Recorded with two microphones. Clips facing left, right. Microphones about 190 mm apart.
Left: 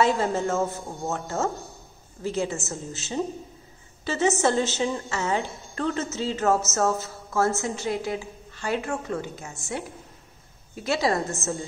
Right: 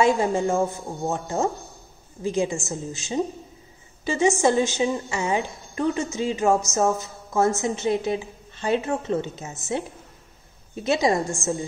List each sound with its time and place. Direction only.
0.0 s a woman's voice: 15° right (ahead or behind)